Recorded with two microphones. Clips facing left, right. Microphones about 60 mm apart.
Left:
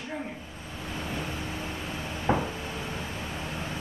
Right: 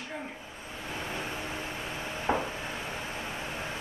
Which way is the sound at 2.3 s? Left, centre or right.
Centre.